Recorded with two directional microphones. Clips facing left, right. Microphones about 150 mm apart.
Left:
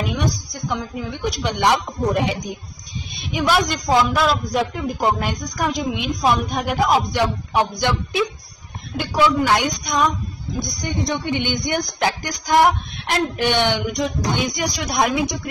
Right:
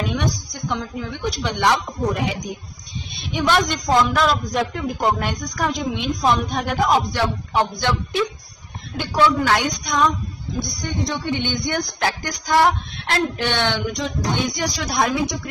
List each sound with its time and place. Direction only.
0.1 s a man's voice: 5° left (ahead or behind)
1.1 s music: 15° left (ahead or behind)
3.3 s a man's voice: 5° left (ahead or behind)
5.3 s music: 10° left (ahead or behind)